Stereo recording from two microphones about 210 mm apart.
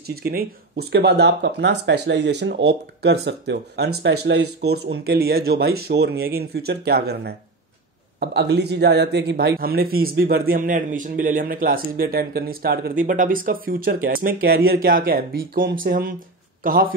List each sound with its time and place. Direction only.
0.0 s a man's voice: 45° right (ahead or behind)